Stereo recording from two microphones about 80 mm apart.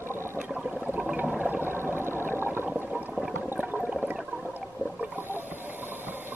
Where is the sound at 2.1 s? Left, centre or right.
Left.